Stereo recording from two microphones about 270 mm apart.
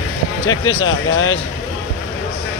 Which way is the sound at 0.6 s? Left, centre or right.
Left.